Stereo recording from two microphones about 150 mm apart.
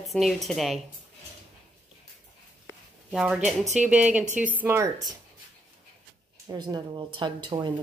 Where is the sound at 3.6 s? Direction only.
50° right (ahead or behind).